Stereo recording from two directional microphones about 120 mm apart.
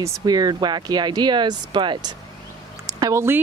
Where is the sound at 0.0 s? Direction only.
30° right (ahead or behind).